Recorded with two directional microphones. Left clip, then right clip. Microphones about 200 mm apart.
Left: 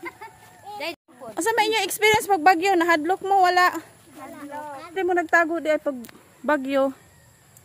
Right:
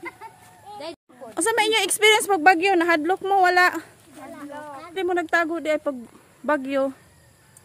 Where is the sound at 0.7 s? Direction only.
55° left (ahead or behind).